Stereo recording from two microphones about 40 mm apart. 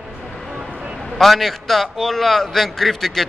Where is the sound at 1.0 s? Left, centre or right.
Centre.